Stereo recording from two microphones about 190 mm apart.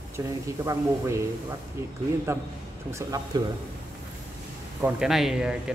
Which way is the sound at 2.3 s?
15° right (ahead or behind).